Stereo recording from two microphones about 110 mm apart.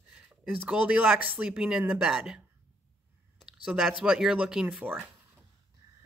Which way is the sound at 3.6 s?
5° right (ahead or behind).